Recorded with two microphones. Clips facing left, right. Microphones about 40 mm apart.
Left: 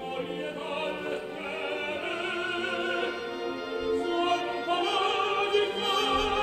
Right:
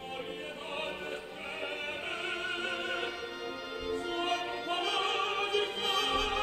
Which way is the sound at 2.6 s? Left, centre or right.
Centre.